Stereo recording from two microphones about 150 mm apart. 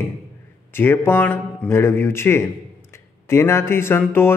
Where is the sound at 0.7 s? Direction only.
15° left (ahead or behind).